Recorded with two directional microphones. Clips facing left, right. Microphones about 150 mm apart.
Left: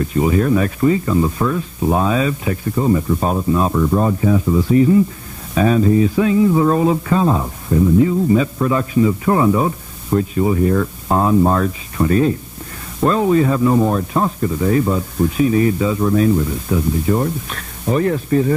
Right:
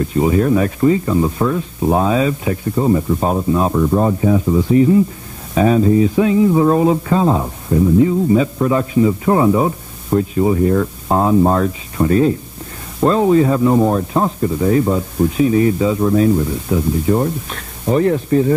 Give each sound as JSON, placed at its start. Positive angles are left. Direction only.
{"t": 0.2, "sound": "speech", "side_deg": -25}
{"t": 12.0, "sound": "speech", "side_deg": -50}
{"t": 13.0, "sound": "speech", "side_deg": -30}